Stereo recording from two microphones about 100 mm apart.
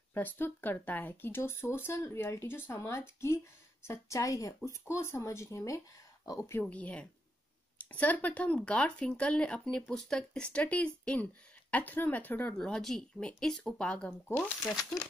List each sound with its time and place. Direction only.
0.1 s a woman's voice: 20° left (ahead or behind)
6.5 s speech: 15° left (ahead or behind)
12.5 s speech: 5° left (ahead or behind)